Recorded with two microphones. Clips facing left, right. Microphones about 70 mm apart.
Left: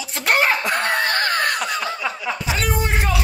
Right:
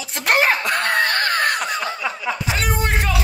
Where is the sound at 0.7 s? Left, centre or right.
Right.